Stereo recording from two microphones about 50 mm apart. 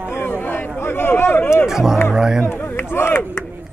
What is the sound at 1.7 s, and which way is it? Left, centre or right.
Speech, centre.